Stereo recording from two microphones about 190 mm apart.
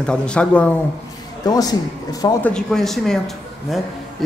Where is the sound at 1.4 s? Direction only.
20° left (ahead or behind).